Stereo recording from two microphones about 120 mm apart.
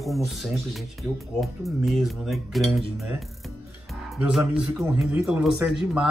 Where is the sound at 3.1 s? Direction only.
Centre (ahead or behind).